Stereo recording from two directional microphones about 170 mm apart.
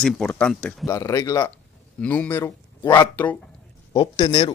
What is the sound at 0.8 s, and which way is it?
Speech, 20° left (ahead or behind).